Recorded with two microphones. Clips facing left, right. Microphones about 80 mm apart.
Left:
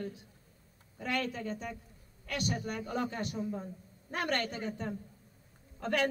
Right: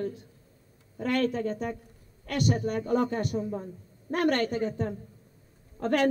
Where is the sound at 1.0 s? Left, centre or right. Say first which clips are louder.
Right 8 dB; right.